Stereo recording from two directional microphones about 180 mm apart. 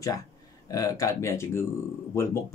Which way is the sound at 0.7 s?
20° left (ahead or behind).